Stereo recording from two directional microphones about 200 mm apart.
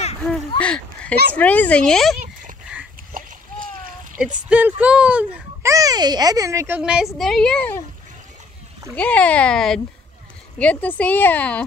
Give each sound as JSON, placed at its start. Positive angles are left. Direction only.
{"t": 0.6, "sound": "a child's voice", "side_deg": 5}
{"t": 3.1, "sound": "splash", "side_deg": -45}
{"t": 4.5, "sound": "a child's voice", "side_deg": -10}
{"t": 8.9, "sound": "a child's voice", "side_deg": 5}